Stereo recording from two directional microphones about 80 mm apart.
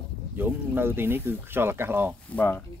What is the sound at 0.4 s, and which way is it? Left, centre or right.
Speech, right.